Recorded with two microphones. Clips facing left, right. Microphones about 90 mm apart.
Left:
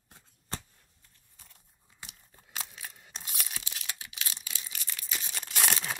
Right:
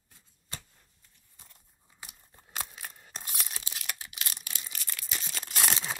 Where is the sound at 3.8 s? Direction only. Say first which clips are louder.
Right 4 dB; 55° right (ahead or behind).